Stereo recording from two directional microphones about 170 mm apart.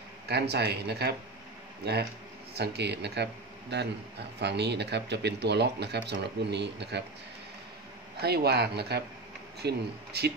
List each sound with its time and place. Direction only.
0.3 s speech: 75° right (ahead or behind)
2.5 s speech: 75° right (ahead or behind)
8.2 s speech: 70° right (ahead or behind)